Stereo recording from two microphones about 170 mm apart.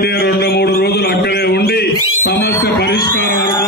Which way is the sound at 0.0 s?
65° left (ahead or behind).